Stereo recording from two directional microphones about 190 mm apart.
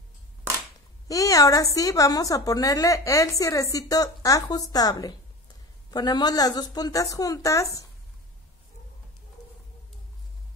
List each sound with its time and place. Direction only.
1.0 s a woman's voice: 20° left (ahead or behind)